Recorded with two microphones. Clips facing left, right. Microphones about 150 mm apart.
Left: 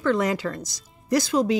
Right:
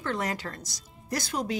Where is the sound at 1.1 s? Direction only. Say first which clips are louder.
Left 10 dB; 90° left.